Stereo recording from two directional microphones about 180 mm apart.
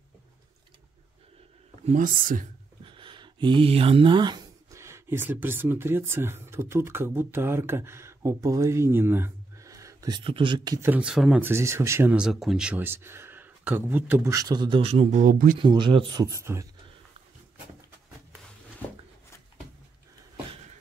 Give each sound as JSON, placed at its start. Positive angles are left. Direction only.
{"t": 1.9, "sound": "speech", "side_deg": -50}
{"t": 2.8, "sound": "speech", "side_deg": -30}
{"t": 10.9, "sound": "speech", "side_deg": -5}
{"t": 15.6, "sound": "speech", "side_deg": -25}